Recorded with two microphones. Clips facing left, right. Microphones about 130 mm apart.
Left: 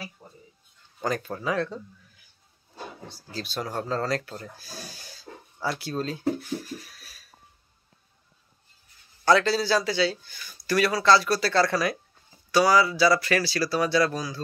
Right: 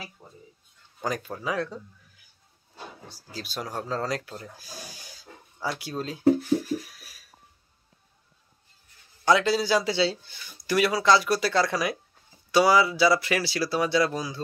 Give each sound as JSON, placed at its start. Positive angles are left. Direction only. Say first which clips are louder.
{"t": 1.0, "sound": "speech", "louder": "left 2 dB", "side_deg": -10}
{"t": 3.1, "sound": "speech", "louder": "left 3 dB", "side_deg": -10}
{"t": 6.9, "sound": "a sound", "louder": "even", "side_deg": -10}
{"t": 9.2, "sound": "speech", "louder": "left 1 dB", "side_deg": -15}